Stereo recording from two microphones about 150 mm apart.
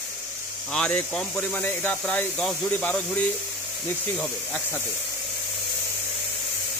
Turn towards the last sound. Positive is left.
turn(degrees=10)  # may be behind; listen again after turning